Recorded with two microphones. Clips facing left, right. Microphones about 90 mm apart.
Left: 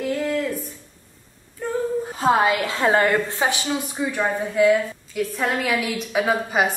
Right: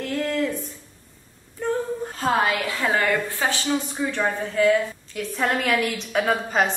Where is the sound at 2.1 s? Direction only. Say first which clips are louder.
Left 3 dB; 20° left (ahead or behind).